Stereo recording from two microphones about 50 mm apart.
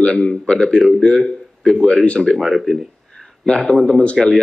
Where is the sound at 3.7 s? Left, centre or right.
Centre.